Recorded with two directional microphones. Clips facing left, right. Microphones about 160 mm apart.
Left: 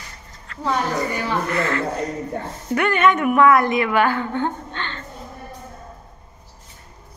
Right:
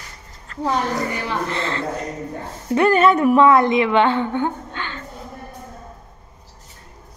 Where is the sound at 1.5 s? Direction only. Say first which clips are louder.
Left 2 dB; 30° right (ahead or behind); by 5.0 s 10° right (ahead or behind).